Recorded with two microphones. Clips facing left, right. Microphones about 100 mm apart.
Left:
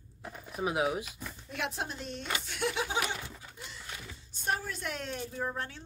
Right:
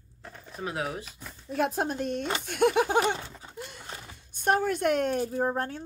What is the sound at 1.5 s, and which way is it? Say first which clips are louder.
Speech: right 9 dB; 45° right (ahead or behind).